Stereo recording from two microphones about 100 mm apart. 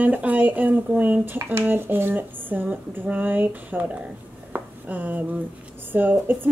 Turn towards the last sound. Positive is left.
turn(degrees=-20)  # may be behind; listen again after turning